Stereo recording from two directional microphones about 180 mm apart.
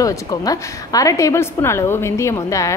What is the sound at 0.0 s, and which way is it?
A woman's voice, 20° left (ahead or behind).